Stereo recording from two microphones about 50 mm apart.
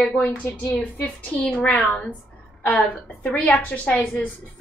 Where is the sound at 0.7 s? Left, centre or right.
Left.